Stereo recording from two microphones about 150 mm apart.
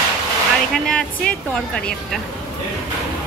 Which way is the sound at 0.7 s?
5° left (ahead or behind).